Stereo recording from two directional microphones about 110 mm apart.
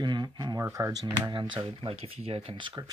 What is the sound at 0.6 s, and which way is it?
Speech, 30° right (ahead or behind).